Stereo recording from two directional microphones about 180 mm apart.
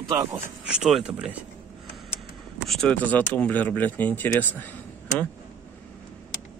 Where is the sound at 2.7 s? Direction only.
5° left (ahead or behind).